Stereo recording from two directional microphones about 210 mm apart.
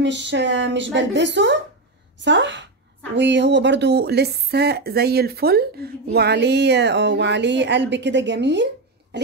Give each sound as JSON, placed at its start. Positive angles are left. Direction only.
{"t": 0.0, "sound": "speech", "side_deg": -55}
{"t": 9.1, "sound": "cough", "side_deg": -55}